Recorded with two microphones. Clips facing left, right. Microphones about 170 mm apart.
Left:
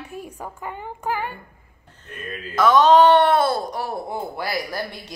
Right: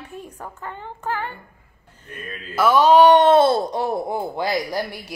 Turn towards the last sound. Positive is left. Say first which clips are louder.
# right 3 dB
turn(degrees=-15)  # may be behind; listen again after turning